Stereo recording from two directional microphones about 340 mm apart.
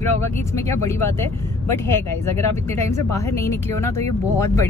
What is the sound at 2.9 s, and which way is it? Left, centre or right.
Speech, centre.